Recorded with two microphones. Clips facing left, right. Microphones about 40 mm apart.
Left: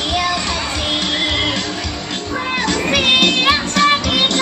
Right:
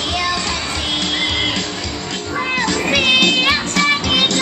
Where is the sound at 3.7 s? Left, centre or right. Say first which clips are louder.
Left 2 dB; left.